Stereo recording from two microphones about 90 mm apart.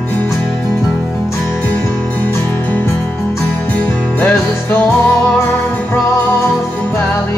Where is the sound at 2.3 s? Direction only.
25° left (ahead or behind).